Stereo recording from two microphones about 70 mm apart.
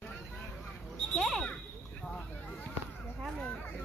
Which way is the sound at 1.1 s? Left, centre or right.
Centre.